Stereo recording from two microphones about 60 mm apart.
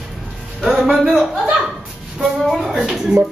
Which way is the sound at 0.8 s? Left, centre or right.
Centre.